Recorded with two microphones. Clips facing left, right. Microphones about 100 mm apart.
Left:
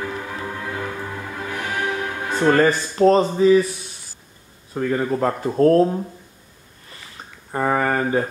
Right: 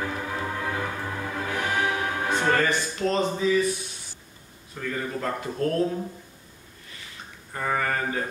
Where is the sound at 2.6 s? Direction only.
40° left (ahead or behind).